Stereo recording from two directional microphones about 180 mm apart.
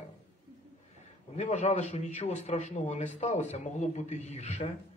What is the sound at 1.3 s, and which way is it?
A man's voice, 40° left (ahead or behind).